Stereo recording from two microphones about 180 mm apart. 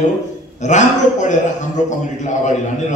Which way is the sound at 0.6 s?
40° left (ahead or behind).